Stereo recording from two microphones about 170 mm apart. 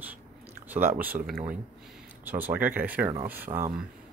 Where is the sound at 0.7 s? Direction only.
10° right (ahead or behind).